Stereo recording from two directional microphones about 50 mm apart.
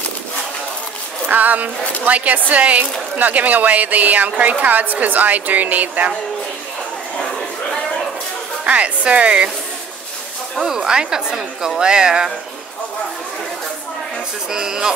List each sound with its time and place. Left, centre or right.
1.2 s a woman's voice: right
8.6 s speech: right
10.6 s a woman's voice: centre
14.5 s a woman's voice: centre